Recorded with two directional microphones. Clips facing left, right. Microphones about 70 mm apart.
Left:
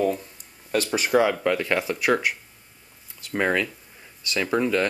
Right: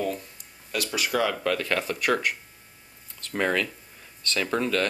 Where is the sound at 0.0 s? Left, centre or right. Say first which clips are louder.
Left 5 dB; left.